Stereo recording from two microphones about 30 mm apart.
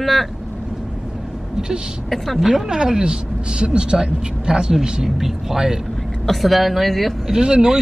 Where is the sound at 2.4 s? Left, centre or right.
Centre.